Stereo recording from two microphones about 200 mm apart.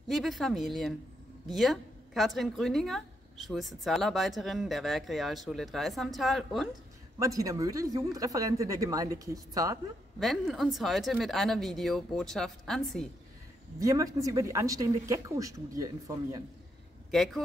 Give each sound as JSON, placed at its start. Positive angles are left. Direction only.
{"t": 0.1, "sound": "speech", "side_deg": 0}
{"t": 7.2, "sound": "speech", "side_deg": -15}
{"t": 10.1, "sound": "speech", "side_deg": 0}
{"t": 13.7, "sound": "speech", "side_deg": -15}
{"t": 17.1, "sound": "speech", "side_deg": 0}